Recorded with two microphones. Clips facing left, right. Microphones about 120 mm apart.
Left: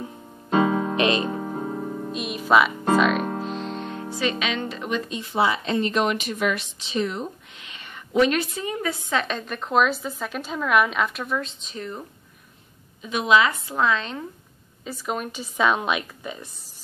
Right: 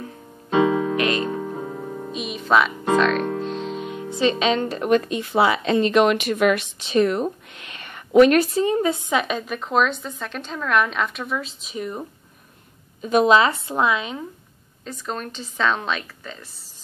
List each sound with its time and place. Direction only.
0.5 s music: 40° left (ahead or behind)
0.9 s music: 20° left (ahead or behind)
2.1 s music: centre (ahead or behind)
4.1 s speech: 25° right (ahead or behind)
4.6 s speech: 45° right (ahead or behind)
8.4 s speech: 35° right (ahead or behind)
9.1 s a woman's voice: 10° right (ahead or behind)
13.0 s speech: 40° right (ahead or behind)
13.7 s speech: 15° right (ahead or behind)
14.9 s a woman's voice: 10° left (ahead or behind)